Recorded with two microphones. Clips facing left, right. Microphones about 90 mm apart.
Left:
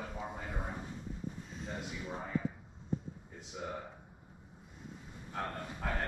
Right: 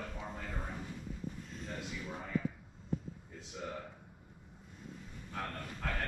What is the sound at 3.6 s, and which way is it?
Speech, 15° left (ahead or behind).